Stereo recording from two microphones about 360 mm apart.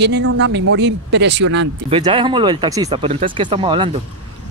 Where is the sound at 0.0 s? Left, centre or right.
Right.